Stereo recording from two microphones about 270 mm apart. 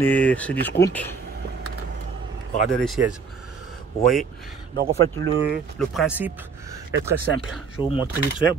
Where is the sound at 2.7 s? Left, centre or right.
Centre.